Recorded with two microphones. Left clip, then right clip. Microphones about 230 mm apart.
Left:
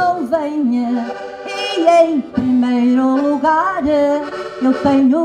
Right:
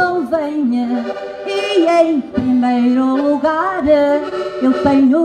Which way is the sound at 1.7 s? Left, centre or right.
Left.